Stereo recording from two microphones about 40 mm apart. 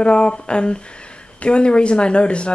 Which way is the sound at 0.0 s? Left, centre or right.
Left.